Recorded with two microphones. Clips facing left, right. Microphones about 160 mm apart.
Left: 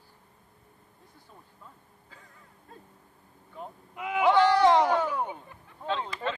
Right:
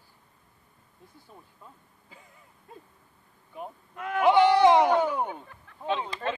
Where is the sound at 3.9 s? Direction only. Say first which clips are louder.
Even; 10° left (ahead or behind).